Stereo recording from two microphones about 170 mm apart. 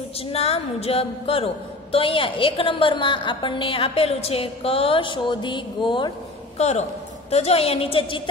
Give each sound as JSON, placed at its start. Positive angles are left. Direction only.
{"t": 0.3, "sound": "a woman's voice", "side_deg": 35}
{"t": 6.6, "sound": "a woman's voice", "side_deg": 40}